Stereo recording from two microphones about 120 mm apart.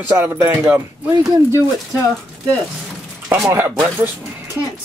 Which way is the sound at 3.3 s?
20° right (ahead or behind).